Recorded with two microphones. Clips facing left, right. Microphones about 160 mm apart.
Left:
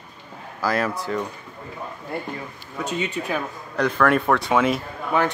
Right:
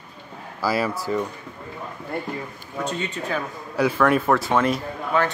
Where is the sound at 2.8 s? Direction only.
10° left (ahead or behind).